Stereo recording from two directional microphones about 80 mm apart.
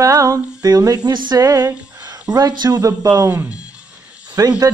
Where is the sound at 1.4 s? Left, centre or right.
Right.